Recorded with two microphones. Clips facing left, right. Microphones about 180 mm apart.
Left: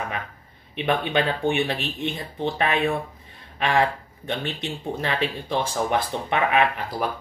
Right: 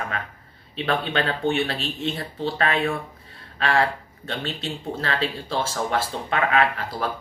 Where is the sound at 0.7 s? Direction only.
15° left (ahead or behind).